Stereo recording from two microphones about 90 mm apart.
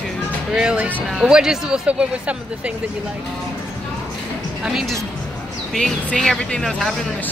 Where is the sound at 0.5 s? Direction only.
15° right (ahead or behind).